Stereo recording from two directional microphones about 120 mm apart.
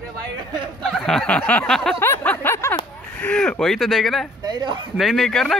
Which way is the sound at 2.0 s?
15° left (ahead or behind).